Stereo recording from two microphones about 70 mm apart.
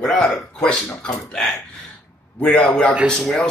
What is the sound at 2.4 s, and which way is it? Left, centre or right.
Speech, centre.